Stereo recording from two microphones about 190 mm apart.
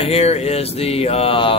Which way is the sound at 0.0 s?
35° left (ahead or behind).